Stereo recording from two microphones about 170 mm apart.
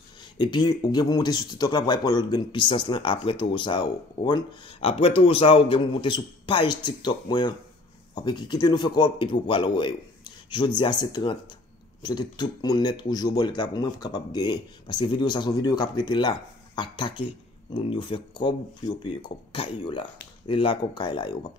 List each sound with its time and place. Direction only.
0.2 s speech: 25° left (ahead or behind)
19.5 s speech: 30° left (ahead or behind)